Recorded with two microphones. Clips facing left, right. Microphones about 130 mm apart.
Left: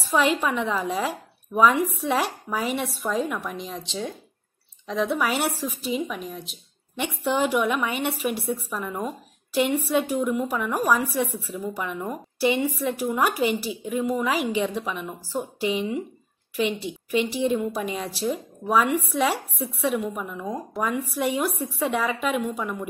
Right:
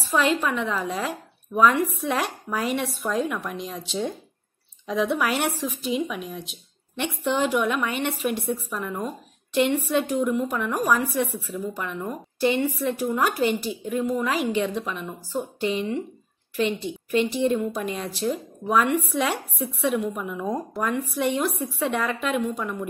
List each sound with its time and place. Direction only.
0.1 s a woman's voice: 10° left (ahead or behind)
4.8 s a woman's voice: centre (ahead or behind)
7.2 s a woman's voice: 10° left (ahead or behind)